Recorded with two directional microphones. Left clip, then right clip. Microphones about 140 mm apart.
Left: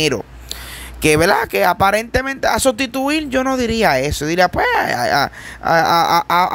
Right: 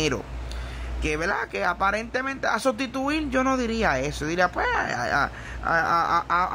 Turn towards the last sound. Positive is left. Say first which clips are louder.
# left 9 dB
turn(degrees=50)  # may be behind; listen again after turning